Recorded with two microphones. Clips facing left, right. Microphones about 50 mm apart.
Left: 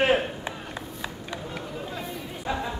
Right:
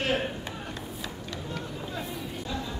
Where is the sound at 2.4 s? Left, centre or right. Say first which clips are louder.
Left 8 dB; left.